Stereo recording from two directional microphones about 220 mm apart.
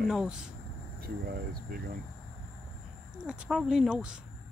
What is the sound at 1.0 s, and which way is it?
Speech, 45° right (ahead or behind).